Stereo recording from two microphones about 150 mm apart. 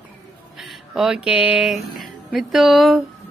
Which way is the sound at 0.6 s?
Centre (ahead or behind).